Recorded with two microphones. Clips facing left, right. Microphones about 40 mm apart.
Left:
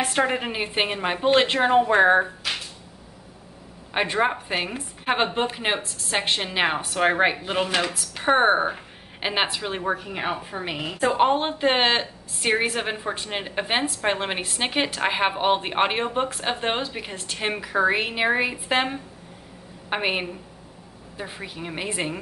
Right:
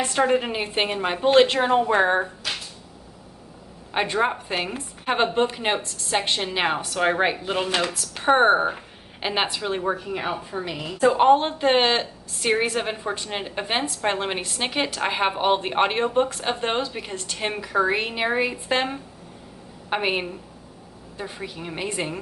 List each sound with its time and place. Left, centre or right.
0.0 s a woman's voice: left
0.4 s a woman's voice: centre
3.9 s a woman's voice: centre
6.1 s a woman's voice: left
6.4 s a woman's voice: centre; by 11.1 s left
11.1 s a woman's voice: centre